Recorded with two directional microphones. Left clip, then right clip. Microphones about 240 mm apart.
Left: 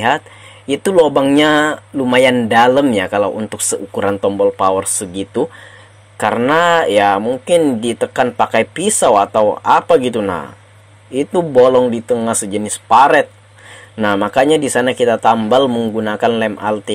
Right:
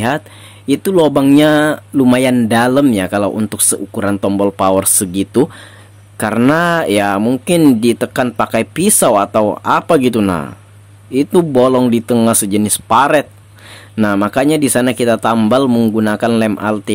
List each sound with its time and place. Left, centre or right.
0.7 s speech: right
6.1 s speech: right